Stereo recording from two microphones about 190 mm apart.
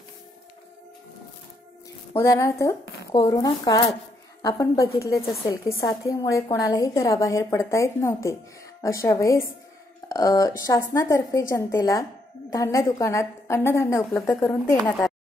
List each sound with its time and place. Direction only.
2.1 s a woman's voice: 15° left (ahead or behind)